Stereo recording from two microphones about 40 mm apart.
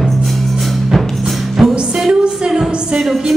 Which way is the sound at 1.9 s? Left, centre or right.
Centre.